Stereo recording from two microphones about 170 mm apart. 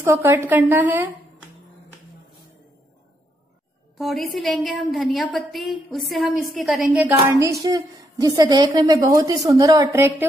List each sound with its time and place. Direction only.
0.0 s a woman's voice: 15° right (ahead or behind)
4.0 s a woman's voice: centre (ahead or behind)